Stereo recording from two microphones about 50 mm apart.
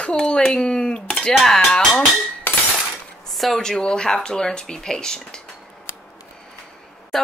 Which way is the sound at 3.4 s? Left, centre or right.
Centre.